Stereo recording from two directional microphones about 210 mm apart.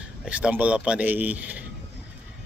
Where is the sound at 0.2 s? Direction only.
5° right (ahead or behind).